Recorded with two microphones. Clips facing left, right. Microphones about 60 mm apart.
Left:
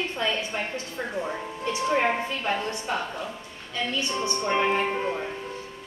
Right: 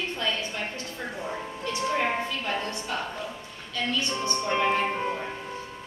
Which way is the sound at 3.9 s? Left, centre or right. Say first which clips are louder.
Left 2 dB; left.